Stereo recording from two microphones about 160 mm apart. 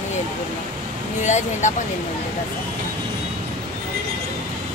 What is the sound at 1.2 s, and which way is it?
Speech, 50° left (ahead or behind).